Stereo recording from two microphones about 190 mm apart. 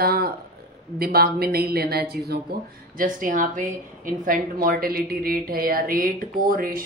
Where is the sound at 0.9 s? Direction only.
55° right (ahead or behind).